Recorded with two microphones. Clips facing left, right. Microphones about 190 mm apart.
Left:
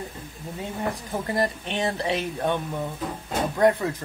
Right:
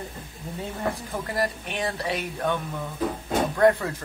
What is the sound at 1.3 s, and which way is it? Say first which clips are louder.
Speech: left 2 dB; 25° left (ahead or behind).